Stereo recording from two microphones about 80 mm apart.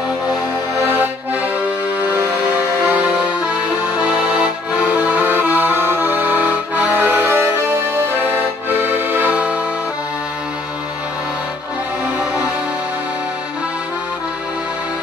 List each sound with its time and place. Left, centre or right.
2.9 s music: centre
3.5 s accordion: centre